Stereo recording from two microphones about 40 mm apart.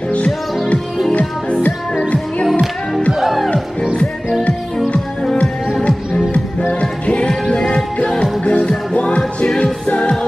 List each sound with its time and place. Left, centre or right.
1.1 s music: left
3.2 s music: centre
5.9 s music: left
8.5 s music: left